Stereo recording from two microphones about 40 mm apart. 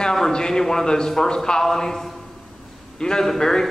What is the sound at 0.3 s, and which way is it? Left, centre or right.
A man's voice, centre.